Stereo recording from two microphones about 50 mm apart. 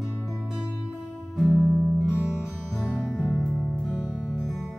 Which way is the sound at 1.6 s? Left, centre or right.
Centre.